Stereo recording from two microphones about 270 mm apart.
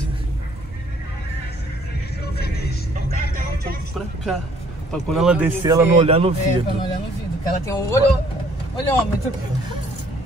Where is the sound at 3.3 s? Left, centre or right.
Right.